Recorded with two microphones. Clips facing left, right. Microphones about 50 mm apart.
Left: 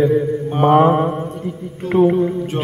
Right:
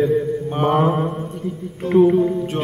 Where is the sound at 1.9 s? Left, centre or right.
Centre.